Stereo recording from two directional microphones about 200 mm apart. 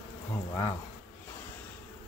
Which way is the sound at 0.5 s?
15° left (ahead or behind).